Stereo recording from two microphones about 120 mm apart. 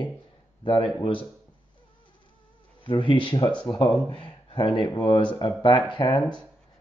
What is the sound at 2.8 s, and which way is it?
A man's voice, 45° left (ahead or behind).